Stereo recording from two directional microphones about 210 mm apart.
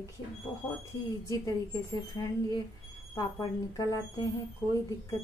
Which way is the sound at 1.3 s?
15° left (ahead or behind).